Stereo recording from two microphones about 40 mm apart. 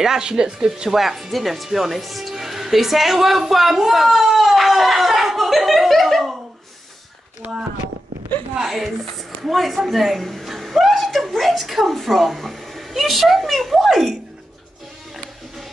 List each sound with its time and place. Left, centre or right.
0.0 s speech: centre
8.6 s a woman's voice: centre